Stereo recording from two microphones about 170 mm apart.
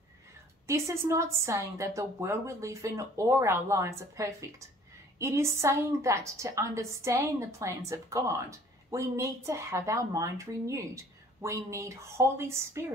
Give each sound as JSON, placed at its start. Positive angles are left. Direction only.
{"t": 0.7, "sound": "a woman's voice", "side_deg": -15}